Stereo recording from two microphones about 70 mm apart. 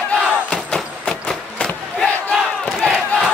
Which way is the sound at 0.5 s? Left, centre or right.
Centre.